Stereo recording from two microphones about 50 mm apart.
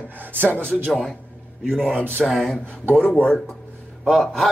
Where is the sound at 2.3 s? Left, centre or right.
Centre.